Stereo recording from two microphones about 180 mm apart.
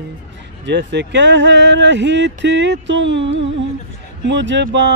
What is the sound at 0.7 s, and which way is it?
Speech, 75° right (ahead or behind).